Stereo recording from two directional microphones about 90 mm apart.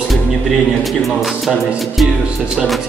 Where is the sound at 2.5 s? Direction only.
Centre (ahead or behind).